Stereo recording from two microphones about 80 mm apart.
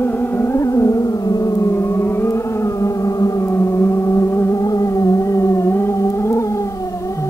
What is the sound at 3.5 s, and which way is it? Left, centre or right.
Music, left.